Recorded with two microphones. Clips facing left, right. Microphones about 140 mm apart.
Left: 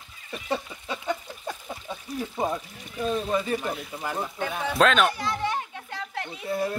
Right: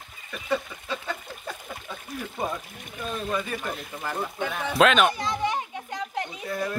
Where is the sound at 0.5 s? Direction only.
20° left (ahead or behind).